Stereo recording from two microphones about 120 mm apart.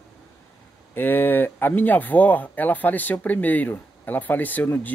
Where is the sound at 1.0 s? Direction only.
15° left (ahead or behind).